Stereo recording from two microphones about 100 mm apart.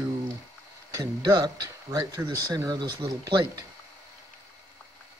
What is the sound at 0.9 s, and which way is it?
Speech, 35° right (ahead or behind).